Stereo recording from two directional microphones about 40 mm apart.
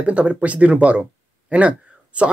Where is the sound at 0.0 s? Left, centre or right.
Right.